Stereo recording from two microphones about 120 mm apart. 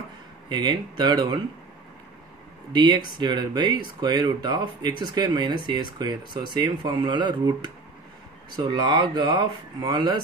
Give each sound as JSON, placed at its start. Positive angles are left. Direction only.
{"t": 0.5, "sound": "speech", "side_deg": -35}
{"t": 2.7, "sound": "speech", "side_deg": -35}